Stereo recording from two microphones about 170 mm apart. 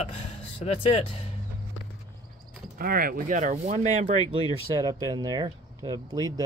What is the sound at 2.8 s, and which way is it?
Speech, 60° right (ahead or behind).